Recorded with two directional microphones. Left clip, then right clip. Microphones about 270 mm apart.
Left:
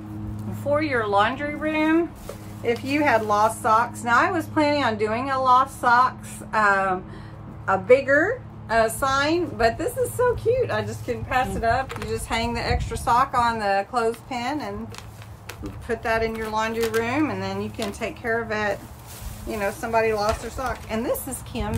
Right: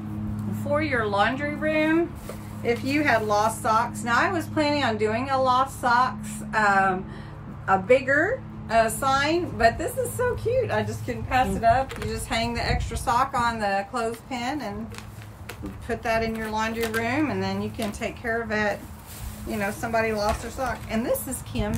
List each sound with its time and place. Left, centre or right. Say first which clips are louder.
0.7 s a woman's voice: left 2 dB; centre
15.9 s a woman's voice: left 2 dB; centre